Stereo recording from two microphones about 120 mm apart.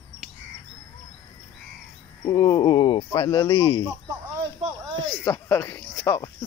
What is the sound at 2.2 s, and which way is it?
Cricket, 30° left (ahead or behind).